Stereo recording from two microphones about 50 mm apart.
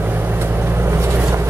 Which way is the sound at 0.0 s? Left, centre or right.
Right.